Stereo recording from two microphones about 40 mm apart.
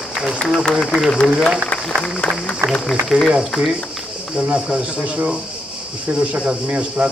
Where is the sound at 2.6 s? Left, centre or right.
Right.